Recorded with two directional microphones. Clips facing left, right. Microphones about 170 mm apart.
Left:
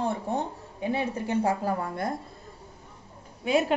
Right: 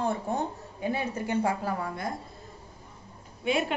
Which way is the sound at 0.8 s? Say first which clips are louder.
Left 2 dB; 25° left (ahead or behind).